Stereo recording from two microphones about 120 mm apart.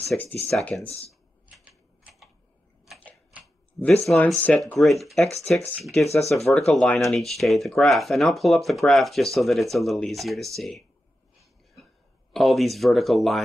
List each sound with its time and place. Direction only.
0.1 s speech: 5° left (ahead or behind)
0.8 s speech: 55° left (ahead or behind)
3.8 s speech: 5° left (ahead or behind)
12.3 s speech: centre (ahead or behind)